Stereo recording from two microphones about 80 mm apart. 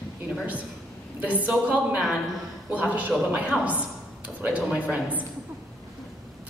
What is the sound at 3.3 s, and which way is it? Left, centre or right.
A woman's voice, centre.